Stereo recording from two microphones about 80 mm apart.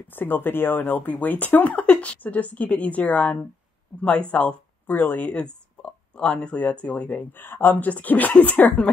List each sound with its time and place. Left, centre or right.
0.1 s speech: left